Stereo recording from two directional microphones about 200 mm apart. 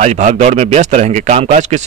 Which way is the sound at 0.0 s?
35° right (ahead or behind).